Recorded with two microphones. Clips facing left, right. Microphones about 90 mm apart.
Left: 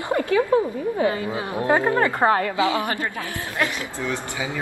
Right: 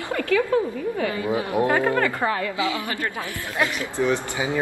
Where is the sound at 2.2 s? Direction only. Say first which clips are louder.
Left 5 dB; 40° left (ahead or behind).